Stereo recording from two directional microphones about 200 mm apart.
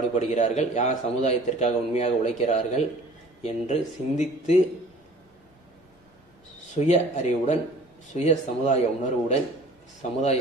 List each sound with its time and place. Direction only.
0.1 s a man's voice: 35° left (ahead or behind)
6.7 s a man's voice: 35° left (ahead or behind)